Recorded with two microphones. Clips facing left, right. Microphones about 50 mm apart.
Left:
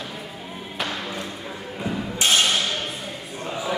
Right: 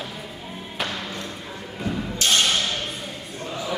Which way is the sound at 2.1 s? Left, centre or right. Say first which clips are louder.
Left 1 dB; centre.